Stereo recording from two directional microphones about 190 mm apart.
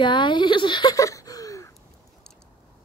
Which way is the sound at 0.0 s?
25° left (ahead or behind).